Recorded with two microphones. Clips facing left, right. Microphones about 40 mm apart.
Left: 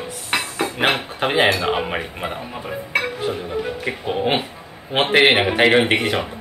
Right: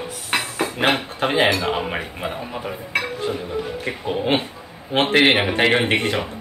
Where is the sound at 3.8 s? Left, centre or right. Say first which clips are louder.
Left 2 dB; centre.